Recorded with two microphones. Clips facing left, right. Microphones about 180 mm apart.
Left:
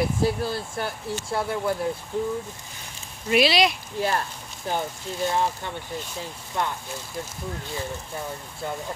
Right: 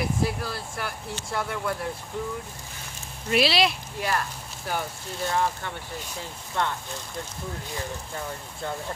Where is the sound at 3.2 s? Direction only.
Centre (ahead or behind).